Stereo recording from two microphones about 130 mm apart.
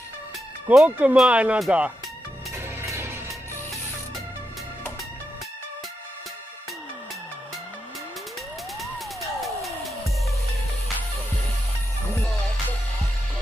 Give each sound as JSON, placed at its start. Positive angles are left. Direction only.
{"t": 0.7, "sound": "speech", "side_deg": -10}
{"t": 2.5, "sound": "music", "side_deg": -20}
{"t": 8.7, "sound": "music", "side_deg": 0}
{"t": 12.2, "sound": "music", "side_deg": 10}